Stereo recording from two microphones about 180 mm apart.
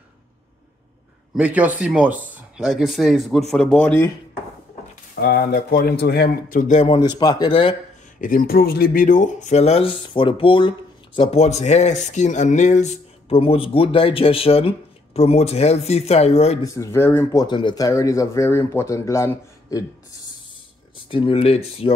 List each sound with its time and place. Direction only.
1.3 s a man's voice: 5° right (ahead or behind)
5.1 s a man's voice: 65° left (ahead or behind); by 6.9 s 45° left (ahead or behind)
6.9 s speech: 25° left (ahead or behind)
8.2 s speech: 50° left (ahead or behind)
16.6 s speech: 15° left (ahead or behind)
20.9 s speech: 30° left (ahead or behind)